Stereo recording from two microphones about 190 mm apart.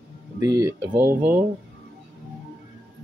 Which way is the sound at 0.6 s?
15° right (ahead or behind).